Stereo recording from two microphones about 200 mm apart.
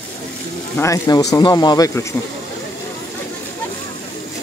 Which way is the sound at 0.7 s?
15° left (ahead or behind).